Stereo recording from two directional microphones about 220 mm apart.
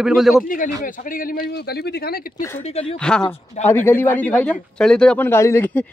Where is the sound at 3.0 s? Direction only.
5° left (ahead or behind).